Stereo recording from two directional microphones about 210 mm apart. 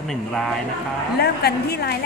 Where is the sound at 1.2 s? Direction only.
50° left (ahead or behind).